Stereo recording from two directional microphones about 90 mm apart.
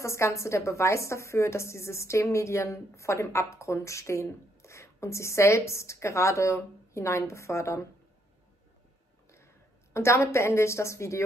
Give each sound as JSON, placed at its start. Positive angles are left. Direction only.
{"t": 0.0, "sound": "a woman's voice", "side_deg": 30}
{"t": 9.9, "sound": "a woman's voice", "side_deg": 30}